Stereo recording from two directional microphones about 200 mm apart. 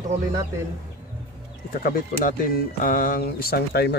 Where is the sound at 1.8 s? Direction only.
45° left (ahead or behind).